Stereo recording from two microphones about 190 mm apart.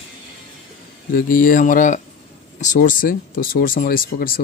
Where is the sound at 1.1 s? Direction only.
45° left (ahead or behind).